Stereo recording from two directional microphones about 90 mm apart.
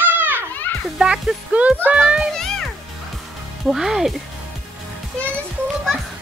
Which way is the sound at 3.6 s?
5° right (ahead or behind).